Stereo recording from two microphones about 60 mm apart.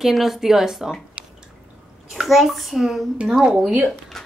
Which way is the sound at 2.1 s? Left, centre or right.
Centre.